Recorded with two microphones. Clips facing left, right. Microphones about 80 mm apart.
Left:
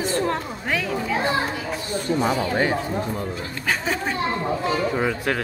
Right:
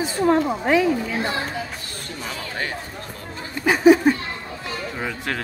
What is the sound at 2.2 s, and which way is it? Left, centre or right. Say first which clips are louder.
Speech: left 7 dB; left.